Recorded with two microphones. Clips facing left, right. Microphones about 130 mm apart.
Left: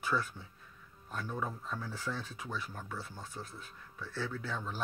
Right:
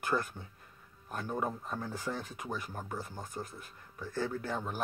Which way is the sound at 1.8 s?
50° right (ahead or behind).